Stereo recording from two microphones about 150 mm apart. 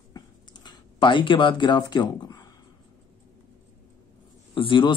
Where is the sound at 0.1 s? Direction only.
30° left (ahead or behind).